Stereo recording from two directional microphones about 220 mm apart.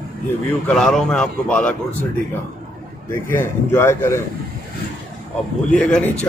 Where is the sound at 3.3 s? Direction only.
10° left (ahead or behind).